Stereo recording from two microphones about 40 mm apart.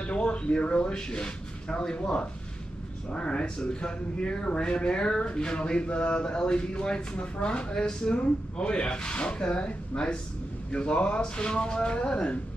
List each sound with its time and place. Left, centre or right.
0.0 s speech: left